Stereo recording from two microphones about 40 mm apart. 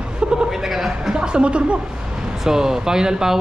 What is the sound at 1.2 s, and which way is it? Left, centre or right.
Speech, right.